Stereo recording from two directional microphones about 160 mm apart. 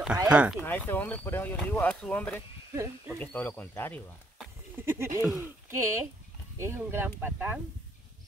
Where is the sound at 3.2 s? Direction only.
10° left (ahead or behind).